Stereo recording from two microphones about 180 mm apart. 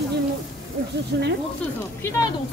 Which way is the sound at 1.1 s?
65° right (ahead or behind).